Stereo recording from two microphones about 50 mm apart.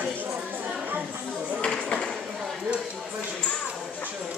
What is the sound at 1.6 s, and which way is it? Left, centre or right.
Music, centre.